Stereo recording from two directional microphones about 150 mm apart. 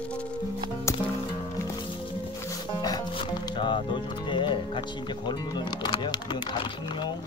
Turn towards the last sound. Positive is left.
turn(degrees=30)  # may be behind; listen again after turning